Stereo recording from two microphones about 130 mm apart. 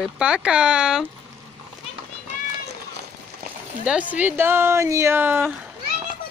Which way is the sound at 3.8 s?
10° right (ahead or behind).